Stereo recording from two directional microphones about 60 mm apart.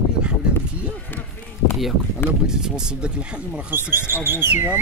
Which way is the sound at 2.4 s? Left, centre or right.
Centre.